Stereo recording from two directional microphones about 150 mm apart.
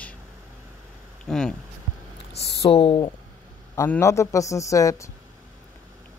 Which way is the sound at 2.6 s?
40° left (ahead or behind).